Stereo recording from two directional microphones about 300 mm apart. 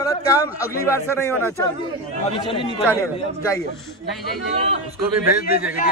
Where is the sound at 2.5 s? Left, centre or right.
Centre.